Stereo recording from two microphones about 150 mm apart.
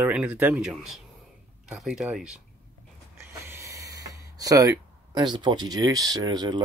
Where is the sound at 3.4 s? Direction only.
20° right (ahead or behind).